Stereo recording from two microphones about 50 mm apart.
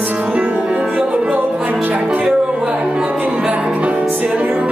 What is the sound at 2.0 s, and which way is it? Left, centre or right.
Speech, right.